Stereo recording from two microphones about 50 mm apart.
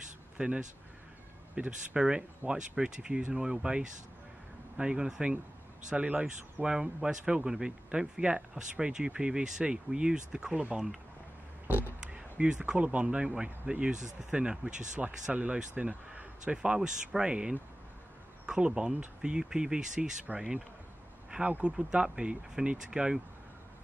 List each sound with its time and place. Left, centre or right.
0.4 s speech: centre
5.9 s speech: right
6.6 s speech: centre
11.6 s a sound: right
12.1 s speech: centre
15.3 s speech: right; by 20.6 s centre
21.3 s speech: right